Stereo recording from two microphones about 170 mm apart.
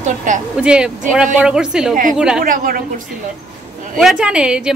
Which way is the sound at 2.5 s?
55° right (ahead or behind).